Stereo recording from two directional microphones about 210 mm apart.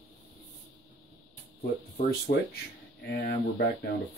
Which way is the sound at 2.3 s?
40° left (ahead or behind).